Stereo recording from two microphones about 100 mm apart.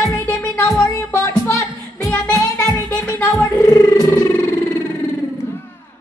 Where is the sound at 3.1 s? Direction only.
25° left (ahead or behind); by 4.1 s 40° left (ahead or behind).